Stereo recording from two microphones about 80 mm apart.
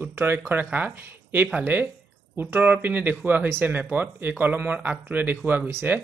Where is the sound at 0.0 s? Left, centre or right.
Right.